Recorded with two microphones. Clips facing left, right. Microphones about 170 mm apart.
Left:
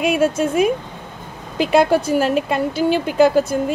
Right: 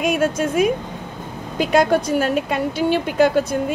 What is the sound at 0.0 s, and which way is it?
A woman's voice, 5° left (ahead or behind).